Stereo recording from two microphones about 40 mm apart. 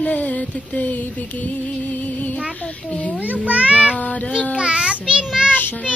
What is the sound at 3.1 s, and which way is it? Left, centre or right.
Speech, right.